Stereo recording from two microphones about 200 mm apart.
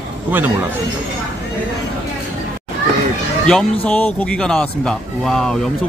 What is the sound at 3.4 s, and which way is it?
A man's voice, 5° left (ahead or behind).